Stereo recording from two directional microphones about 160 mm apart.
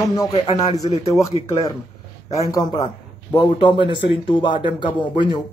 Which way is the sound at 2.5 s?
25° left (ahead or behind).